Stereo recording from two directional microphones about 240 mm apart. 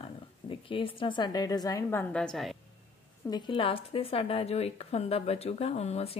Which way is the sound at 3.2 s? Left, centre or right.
Centre.